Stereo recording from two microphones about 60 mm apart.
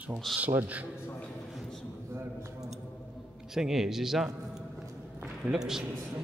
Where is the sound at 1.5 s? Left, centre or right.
Centre.